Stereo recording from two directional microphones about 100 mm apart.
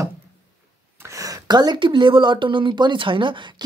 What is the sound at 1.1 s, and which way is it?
Speech, 40° right (ahead or behind).